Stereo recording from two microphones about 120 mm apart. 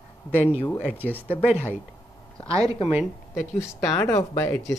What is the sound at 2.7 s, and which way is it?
Speech, 55° left (ahead or behind).